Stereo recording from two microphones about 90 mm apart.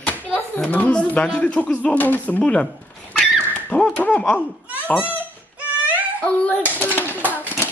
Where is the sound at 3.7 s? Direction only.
15° left (ahead or behind).